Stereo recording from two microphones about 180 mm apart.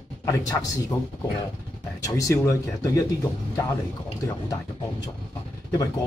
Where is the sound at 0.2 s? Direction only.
20° left (ahead or behind).